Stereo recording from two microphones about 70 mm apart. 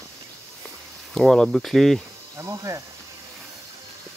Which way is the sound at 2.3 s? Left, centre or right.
Right.